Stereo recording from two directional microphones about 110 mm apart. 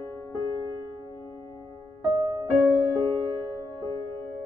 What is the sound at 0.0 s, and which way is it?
Music, 30° left (ahead or behind).